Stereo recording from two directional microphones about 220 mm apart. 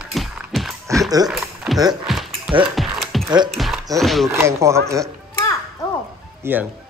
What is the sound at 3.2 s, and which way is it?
Music, 20° right (ahead or behind).